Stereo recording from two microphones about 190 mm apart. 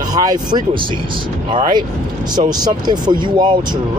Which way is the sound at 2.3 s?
20° right (ahead or behind).